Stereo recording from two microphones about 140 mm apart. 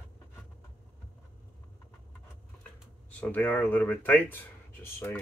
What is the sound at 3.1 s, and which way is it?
Speech, 10° left (ahead or behind).